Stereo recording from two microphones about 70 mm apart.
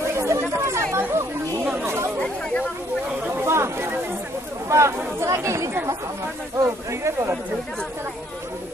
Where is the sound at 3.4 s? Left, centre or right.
Right.